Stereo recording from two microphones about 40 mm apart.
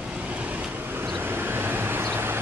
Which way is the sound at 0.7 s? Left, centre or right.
Right.